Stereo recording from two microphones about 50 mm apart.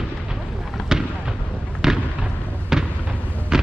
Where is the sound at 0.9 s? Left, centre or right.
Centre.